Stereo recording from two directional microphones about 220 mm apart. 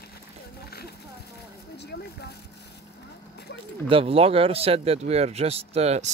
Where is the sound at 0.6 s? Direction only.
45° left (ahead or behind).